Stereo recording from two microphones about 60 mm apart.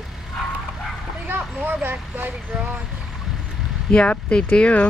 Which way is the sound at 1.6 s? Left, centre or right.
Right.